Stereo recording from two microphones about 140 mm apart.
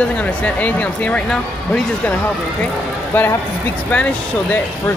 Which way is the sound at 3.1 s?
15° left (ahead or behind).